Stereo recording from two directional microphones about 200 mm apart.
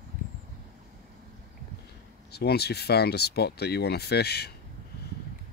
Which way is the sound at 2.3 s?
55° left (ahead or behind).